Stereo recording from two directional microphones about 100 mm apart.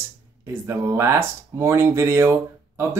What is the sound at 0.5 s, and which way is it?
Speech, 25° right (ahead or behind).